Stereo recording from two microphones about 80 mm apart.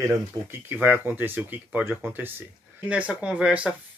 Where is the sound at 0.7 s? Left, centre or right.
Right.